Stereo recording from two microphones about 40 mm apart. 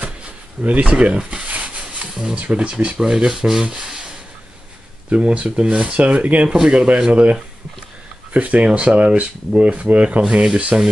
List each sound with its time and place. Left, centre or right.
0.7 s a sound: right
2.3 s speech: right
3.0 s rub: centre
3.8 s a sound: centre
5.1 s speech: right
6.5 s speech: right